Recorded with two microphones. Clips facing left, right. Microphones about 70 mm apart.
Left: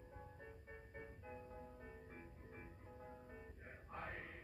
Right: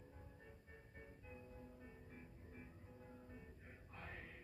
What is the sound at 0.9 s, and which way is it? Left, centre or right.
Music, left.